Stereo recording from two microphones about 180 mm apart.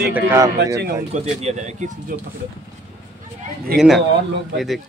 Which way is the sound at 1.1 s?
35° right (ahead or behind).